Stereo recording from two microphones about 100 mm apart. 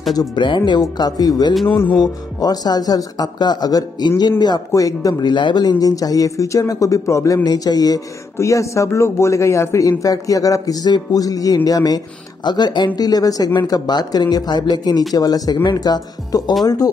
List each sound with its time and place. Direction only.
0.7 s speech: 45° left (ahead or behind)
5.3 s speech: 50° left (ahead or behind)